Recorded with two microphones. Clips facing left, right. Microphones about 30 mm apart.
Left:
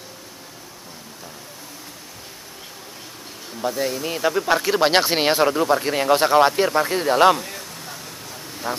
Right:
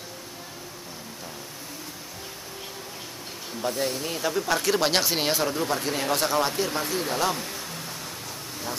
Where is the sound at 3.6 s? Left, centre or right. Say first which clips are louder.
Left 4 dB; centre.